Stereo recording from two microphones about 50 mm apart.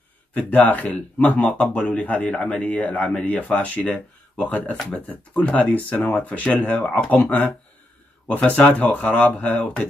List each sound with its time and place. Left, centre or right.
0.3 s speech: left
8.5 s speech: left